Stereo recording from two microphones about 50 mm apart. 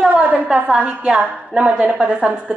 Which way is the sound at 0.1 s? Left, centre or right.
Right.